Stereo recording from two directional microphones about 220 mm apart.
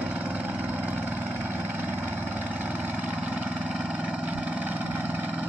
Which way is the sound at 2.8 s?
5° right (ahead or behind).